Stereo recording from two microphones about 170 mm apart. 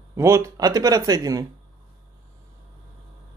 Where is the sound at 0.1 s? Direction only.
15° right (ahead or behind).